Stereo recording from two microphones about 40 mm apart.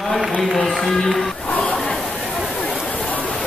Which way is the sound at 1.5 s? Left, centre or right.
Left.